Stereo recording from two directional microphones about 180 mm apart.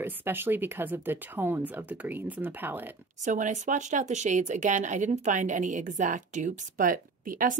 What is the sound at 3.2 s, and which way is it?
Speech, 45° right (ahead or behind).